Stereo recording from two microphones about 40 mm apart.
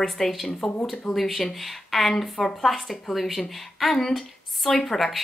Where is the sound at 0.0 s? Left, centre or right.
Centre.